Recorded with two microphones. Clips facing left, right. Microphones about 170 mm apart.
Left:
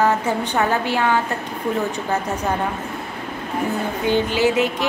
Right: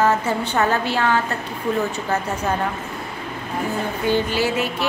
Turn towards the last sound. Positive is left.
turn(degrees=20)  # may be behind; listen again after turning